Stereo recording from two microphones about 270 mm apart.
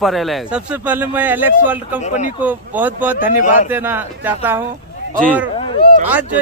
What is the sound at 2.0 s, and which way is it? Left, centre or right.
Speech, left.